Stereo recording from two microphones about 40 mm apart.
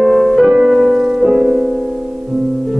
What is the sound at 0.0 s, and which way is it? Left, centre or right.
Music, centre.